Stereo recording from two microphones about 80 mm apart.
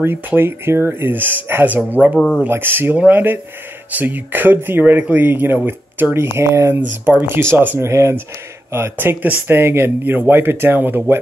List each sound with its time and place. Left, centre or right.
0.0 s speech: right
2.1 s speech: centre
2.4 s speech: right
7.9 s speech: right